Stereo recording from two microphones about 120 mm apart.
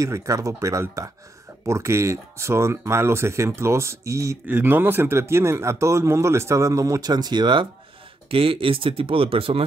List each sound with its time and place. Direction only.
0.0 s speech: 25° right (ahead or behind); by 9.7 s 50° right (ahead or behind)